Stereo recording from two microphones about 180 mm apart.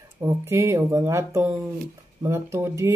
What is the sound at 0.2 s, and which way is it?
Speech, 15° right (ahead or behind).